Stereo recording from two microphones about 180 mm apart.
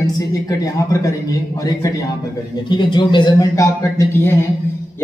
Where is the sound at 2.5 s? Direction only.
25° left (ahead or behind).